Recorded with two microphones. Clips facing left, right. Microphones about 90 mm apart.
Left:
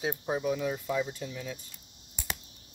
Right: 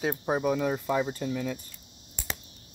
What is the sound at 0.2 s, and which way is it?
Speech, 45° right (ahead or behind).